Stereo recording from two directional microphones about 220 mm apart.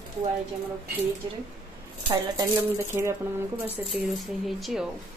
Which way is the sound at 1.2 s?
20° right (ahead or behind).